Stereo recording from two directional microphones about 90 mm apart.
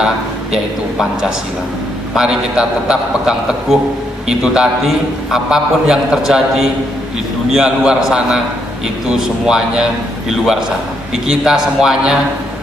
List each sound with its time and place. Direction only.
2.1 s a man's voice: 5° right (ahead or behind)